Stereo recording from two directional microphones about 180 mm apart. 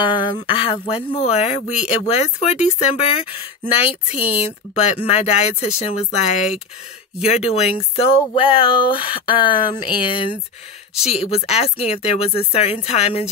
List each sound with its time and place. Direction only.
0.0 s speech: 25° left (ahead or behind)